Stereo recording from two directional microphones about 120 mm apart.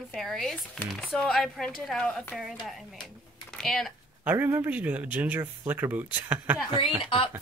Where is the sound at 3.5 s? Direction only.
Centre (ahead or behind).